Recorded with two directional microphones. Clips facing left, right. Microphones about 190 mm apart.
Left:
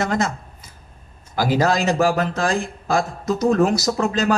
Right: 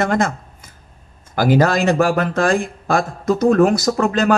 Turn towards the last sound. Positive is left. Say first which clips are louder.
# right 3 dB
turn(degrees=-55)  # may be behind; listen again after turning